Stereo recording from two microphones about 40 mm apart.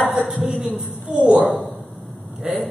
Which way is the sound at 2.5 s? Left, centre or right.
Right.